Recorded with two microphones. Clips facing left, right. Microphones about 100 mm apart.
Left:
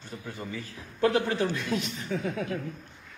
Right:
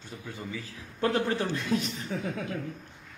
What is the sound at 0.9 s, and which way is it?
Speech, 35° right (ahead or behind).